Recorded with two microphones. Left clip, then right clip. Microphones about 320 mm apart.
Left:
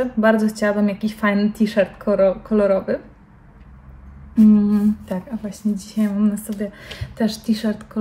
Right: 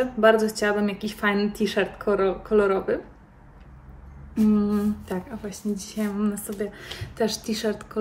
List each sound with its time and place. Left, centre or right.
0.2 s speech: centre
4.5 s speech: centre